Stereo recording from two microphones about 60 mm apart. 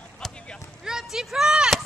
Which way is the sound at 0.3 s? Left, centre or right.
Centre.